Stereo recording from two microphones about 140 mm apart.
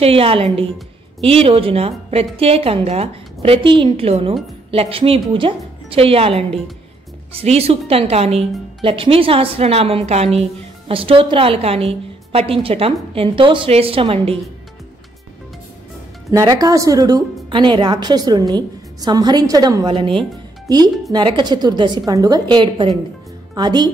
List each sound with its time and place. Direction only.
0.0 s a woman's voice: 45° right (ahead or behind)
16.3 s a woman's voice: 25° right (ahead or behind)